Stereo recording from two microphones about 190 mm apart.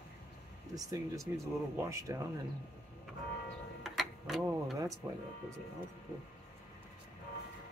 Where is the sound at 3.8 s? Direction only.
Centre (ahead or behind).